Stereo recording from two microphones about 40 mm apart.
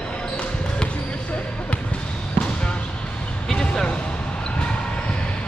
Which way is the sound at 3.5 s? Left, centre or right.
Centre.